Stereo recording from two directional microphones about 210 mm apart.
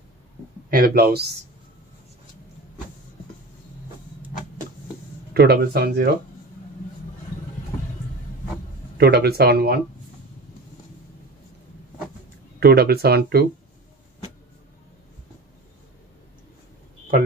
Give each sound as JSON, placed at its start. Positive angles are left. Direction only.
{"t": 0.7, "sound": "speech", "side_deg": -45}
{"t": 5.3, "sound": "speech", "side_deg": -50}
{"t": 8.9, "sound": "speech", "side_deg": -50}
{"t": 12.5, "sound": "speech", "side_deg": -50}